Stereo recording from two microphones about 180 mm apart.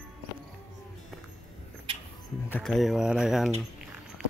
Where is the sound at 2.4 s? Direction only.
10° left (ahead or behind).